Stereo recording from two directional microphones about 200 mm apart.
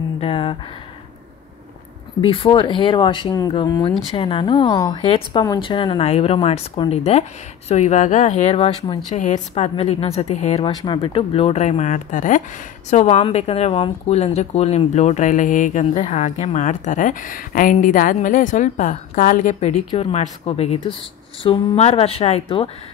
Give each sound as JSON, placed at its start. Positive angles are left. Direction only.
{"t": 0.2, "sound": "a sound", "side_deg": 25}
{"t": 2.2, "sound": "speech", "side_deg": 25}
{"t": 19.9, "sound": "speech", "side_deg": 30}